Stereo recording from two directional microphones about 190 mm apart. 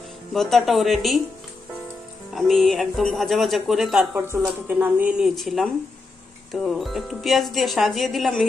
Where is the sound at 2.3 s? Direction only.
Centre (ahead or behind).